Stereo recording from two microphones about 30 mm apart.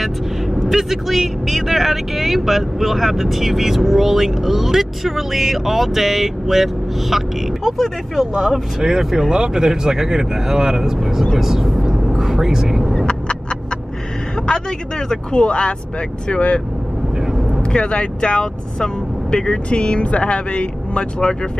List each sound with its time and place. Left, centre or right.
0.7 s speech: centre
8.8 s speech: right
14.4 s speech: left
15.3 s speech: left
17.3 s vehicle: centre
17.7 s speech: left
19.3 s speech: left